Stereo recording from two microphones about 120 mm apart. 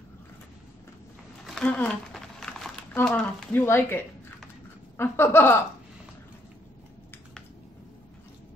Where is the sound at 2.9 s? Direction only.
10° left (ahead or behind).